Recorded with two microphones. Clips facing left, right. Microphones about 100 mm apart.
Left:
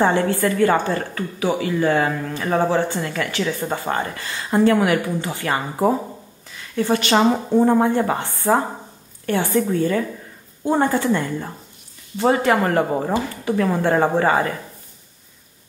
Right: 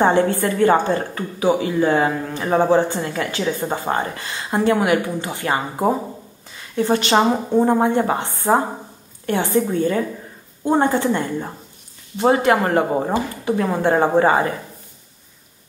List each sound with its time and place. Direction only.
0.0 s a woman's voice: 25° right (ahead or behind)